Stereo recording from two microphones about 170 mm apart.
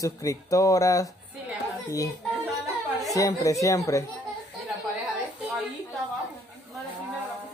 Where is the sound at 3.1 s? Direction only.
20° left (ahead or behind).